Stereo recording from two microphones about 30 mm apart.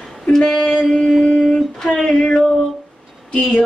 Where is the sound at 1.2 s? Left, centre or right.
Left.